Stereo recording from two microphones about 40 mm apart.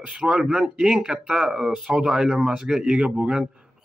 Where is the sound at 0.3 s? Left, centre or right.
Centre.